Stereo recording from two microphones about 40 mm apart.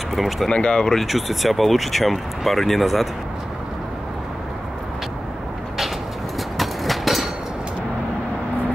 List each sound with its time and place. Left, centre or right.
0.1 s speech: centre
0.5 s speech: left
1.0 s speech: centre
6.6 s a sound: centre